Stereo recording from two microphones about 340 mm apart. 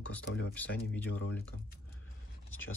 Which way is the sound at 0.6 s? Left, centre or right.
Left.